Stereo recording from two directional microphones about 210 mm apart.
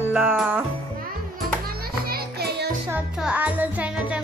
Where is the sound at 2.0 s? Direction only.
50° right (ahead or behind).